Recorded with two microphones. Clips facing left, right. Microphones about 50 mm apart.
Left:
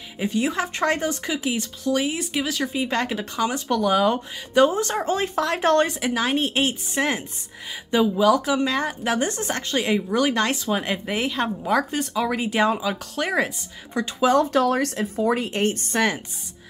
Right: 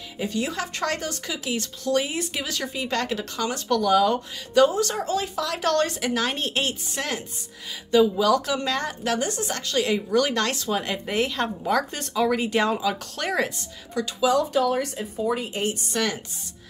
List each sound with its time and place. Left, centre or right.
0.2 s speech: left
1.9 s speech: centre; by 5.9 s left
5.9 s speech: centre
9.3 s speech: left; by 13.5 s centre
14.2 s a woman's voice: left